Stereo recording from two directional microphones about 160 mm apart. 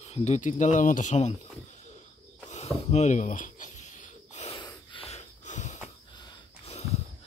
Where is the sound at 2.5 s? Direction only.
40° left (ahead or behind).